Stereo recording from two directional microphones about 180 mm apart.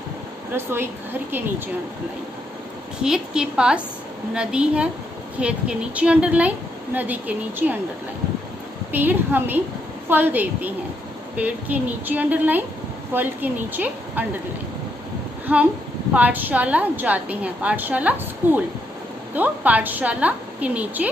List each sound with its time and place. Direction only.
0.5 s a woman's voice: 15° right (ahead or behind)
3.0 s a woman's voice: 5° right (ahead or behind)
8.9 s a woman's voice: 10° right (ahead or behind)
15.5 s a woman's voice: 10° right (ahead or behind)